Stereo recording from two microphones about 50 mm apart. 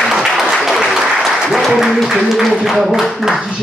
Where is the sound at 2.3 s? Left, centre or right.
Centre.